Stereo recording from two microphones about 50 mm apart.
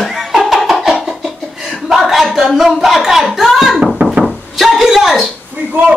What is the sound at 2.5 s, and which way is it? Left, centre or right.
Speech, centre.